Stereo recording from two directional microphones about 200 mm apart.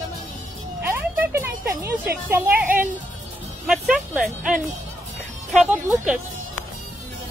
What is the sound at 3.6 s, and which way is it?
Speech, 5° right (ahead or behind).